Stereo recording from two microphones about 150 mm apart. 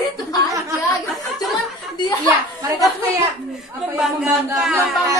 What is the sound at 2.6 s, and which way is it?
Chatter, 25° right (ahead or behind).